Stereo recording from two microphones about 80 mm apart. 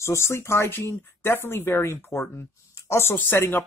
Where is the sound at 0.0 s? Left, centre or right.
Left.